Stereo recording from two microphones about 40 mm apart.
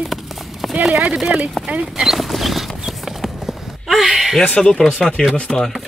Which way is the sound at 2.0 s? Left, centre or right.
Centre.